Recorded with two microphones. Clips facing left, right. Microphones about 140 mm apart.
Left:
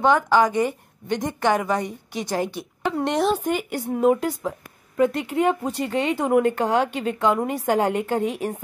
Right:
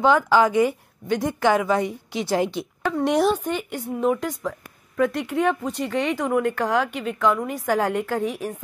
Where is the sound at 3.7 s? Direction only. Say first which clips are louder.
Left 4 dB; 40° left (ahead or behind).